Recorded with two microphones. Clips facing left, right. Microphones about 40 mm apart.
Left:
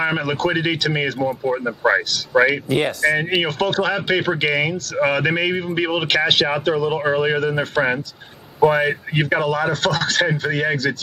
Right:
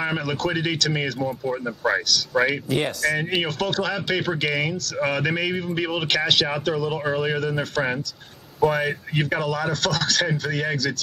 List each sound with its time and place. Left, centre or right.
0.0 s speech: left